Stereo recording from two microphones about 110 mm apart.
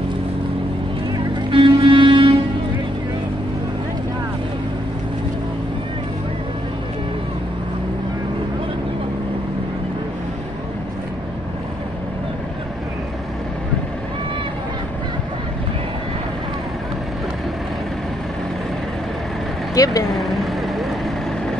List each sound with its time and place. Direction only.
1.5 s music: 50° right (ahead or behind)
19.7 s speech: 30° left (ahead or behind)
20.1 s vehicle: centre (ahead or behind)